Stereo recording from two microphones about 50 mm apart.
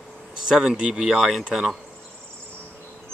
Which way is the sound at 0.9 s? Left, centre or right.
Centre.